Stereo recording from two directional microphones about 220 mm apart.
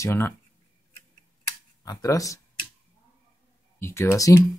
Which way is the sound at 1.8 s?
15° left (ahead or behind).